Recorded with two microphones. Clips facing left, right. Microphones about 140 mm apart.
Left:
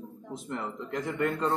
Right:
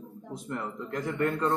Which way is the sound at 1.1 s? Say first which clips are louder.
Right 1 dB; 15° left (ahead or behind).